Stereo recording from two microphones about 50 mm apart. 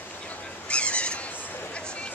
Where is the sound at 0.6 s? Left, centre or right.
Left.